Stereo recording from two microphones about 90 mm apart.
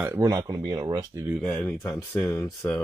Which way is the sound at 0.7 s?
55° right (ahead or behind).